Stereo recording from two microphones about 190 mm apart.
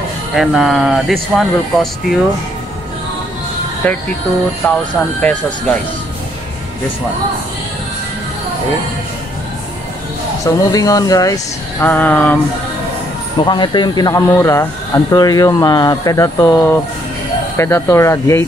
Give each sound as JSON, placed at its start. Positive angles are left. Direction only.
{"t": 0.4, "sound": "speech", "side_deg": 0}
{"t": 3.8, "sound": "speech", "side_deg": 10}
{"t": 10.4, "sound": "speech", "side_deg": 20}
{"t": 11.8, "sound": "speech", "side_deg": 10}
{"t": 13.4, "sound": "speech", "side_deg": 25}